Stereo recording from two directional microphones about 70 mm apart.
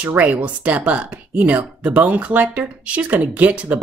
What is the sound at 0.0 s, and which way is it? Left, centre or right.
Speech, right.